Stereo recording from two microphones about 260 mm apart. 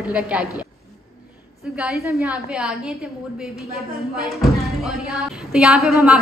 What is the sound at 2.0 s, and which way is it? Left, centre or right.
Speech, centre.